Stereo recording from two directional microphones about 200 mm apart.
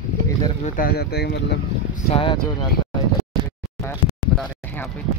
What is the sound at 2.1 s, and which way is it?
Speech, 25° left (ahead or behind).